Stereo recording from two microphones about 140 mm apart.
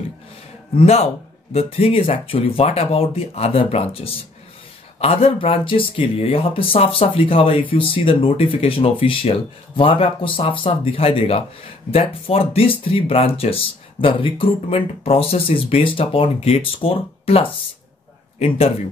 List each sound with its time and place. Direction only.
0.7 s speech: 50° left (ahead or behind)